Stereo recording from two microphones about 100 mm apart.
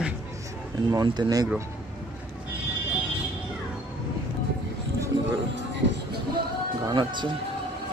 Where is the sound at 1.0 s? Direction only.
45° right (ahead or behind).